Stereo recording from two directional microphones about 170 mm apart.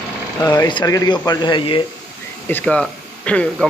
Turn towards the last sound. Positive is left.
turn(degrees=5)  # may be behind; listen again after turning